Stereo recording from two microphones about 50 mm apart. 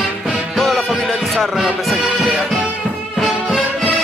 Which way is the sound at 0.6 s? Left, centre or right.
Centre.